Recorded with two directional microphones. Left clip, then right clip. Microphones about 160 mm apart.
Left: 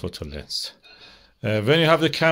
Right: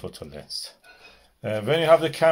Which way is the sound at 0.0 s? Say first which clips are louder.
Left 4 dB; 55° left (ahead or behind).